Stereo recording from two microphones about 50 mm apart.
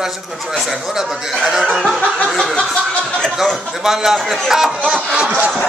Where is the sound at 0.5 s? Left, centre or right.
Centre.